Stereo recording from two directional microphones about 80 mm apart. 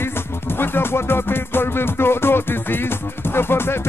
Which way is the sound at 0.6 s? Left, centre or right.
Left.